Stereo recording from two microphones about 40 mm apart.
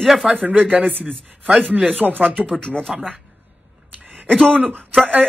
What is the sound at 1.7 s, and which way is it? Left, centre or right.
Speech, right.